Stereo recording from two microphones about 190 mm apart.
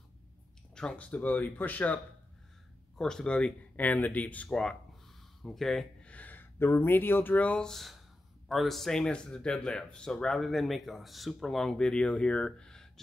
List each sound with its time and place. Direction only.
0.7 s speech: 5° left (ahead or behind)
3.0 s speech: 5° left (ahead or behind)